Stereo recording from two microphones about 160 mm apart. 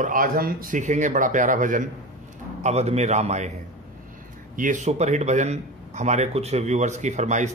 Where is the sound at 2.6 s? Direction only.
40° right (ahead or behind).